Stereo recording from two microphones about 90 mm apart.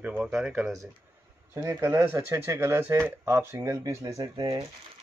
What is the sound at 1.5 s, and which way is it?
Speech, 30° right (ahead or behind).